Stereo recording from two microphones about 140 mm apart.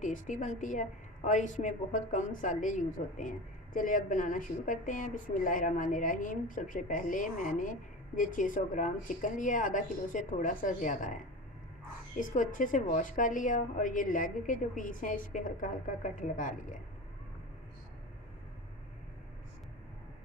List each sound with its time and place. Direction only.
0.0 s a woman's voice: 65° left (ahead or behind)
12.2 s a woman's voice: 70° left (ahead or behind)